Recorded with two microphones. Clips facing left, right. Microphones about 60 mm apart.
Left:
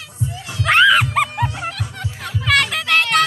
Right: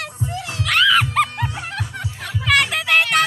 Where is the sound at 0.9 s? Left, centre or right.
Centre.